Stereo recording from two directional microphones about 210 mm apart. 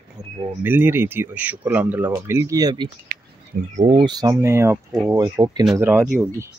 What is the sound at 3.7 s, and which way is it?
Speech, 30° right (ahead or behind).